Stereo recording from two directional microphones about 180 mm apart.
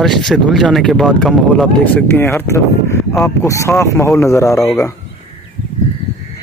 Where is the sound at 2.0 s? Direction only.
10° left (ahead or behind).